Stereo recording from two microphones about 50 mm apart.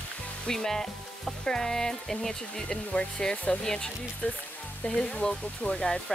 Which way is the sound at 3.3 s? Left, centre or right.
Left.